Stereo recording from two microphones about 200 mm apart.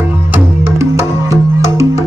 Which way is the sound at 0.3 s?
15° right (ahead or behind).